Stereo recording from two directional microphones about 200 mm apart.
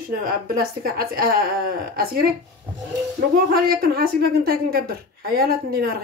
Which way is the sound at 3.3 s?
50° right (ahead or behind).